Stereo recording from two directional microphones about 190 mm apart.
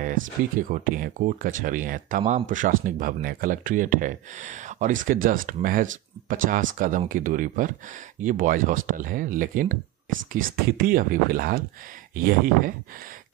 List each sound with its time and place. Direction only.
0.0 s speech: 45° right (ahead or behind)